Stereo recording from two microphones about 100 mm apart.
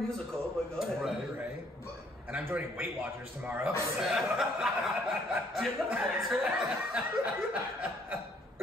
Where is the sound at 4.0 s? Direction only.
5° right (ahead or behind).